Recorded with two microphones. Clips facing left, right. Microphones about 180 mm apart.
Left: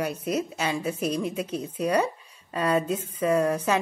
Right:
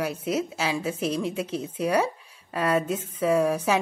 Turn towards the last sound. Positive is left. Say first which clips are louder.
# right 1 dB
turn(degrees=-5)  # may be behind; listen again after turning